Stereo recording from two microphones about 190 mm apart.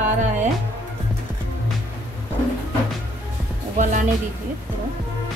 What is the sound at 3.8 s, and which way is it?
Speech, 45° right (ahead or behind).